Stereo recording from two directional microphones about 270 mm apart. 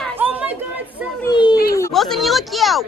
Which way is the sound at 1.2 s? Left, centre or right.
Centre.